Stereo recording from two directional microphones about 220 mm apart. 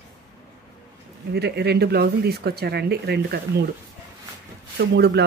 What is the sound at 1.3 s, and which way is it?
Speech, 50° right (ahead or behind).